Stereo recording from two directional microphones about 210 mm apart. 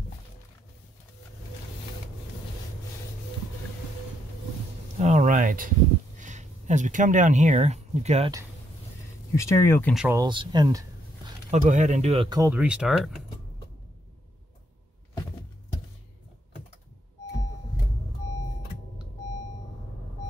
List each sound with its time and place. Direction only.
4.9 s a sound: 35° right (ahead or behind)
6.1 s speech: 35° right (ahead or behind)
9.3 s speech: 15° left (ahead or behind)
10.1 s speech: 20° right (ahead or behind)
11.5 s speech: 35° right (ahead or behind); by 13.2 s centre (ahead or behind)